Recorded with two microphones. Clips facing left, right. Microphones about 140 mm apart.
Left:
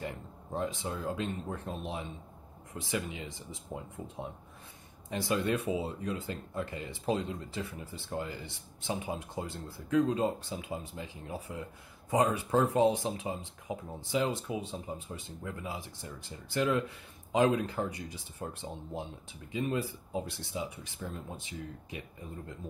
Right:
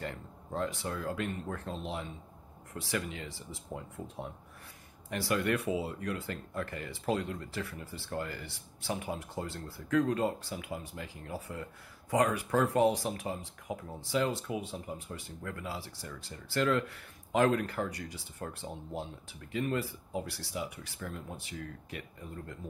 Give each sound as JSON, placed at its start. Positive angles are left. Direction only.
{"t": 0.0, "sound": "speech", "side_deg": 15}